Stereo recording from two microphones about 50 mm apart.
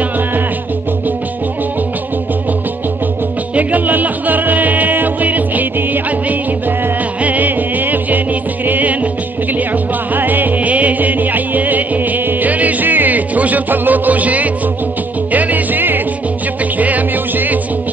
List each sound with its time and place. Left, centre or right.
3.5 s music: right
7.2 s music: right
10.1 s music: right